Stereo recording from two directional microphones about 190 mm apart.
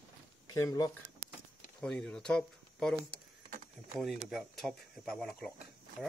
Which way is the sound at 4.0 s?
Centre (ahead or behind).